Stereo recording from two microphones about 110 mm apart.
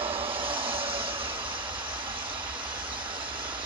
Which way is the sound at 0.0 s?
55° right (ahead or behind).